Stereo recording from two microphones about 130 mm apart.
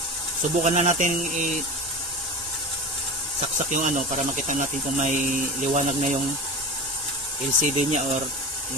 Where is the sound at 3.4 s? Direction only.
65° right (ahead or behind).